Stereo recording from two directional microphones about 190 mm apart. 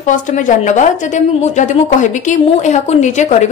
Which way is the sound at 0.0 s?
40° left (ahead or behind).